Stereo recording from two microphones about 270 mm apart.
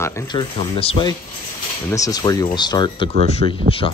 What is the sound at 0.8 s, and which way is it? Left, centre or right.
Speech, centre.